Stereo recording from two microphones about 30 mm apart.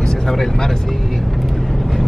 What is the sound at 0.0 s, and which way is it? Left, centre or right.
Speech, centre.